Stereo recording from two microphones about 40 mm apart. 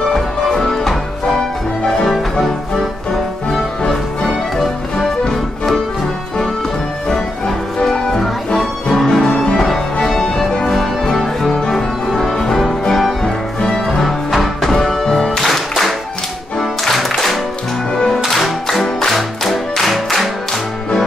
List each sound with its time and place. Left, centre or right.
0.1 s music: centre
3.5 s music: centre
7.1 s music: centre
9.3 s music: left
9.6 s music: centre
13.9 s music: centre
17.9 s music: centre